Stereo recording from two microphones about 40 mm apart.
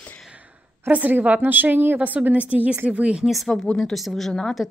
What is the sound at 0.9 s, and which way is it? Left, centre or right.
Speech, right.